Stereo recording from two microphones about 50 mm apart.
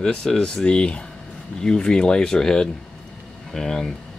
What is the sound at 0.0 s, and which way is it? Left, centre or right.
Speech, centre.